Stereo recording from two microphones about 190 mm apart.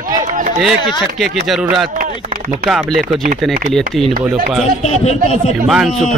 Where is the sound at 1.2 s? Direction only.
Centre (ahead or behind).